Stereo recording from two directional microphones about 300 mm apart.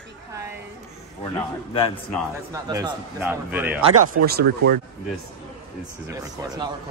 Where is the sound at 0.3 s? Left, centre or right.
Centre.